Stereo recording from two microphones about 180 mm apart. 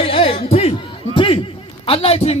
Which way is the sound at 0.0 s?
35° left (ahead or behind).